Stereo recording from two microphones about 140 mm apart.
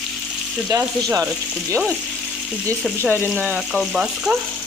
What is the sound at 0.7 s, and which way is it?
Speech, 25° right (ahead or behind).